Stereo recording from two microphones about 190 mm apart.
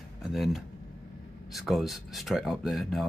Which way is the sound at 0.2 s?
Centre (ahead or behind).